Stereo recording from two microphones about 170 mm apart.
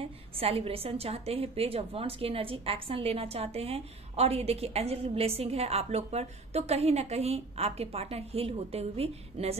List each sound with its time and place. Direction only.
0.0 s a woman's voice: 35° right (ahead or behind)